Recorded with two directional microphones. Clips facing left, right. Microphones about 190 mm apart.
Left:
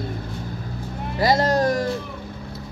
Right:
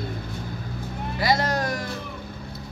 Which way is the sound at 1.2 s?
40° left (ahead or behind).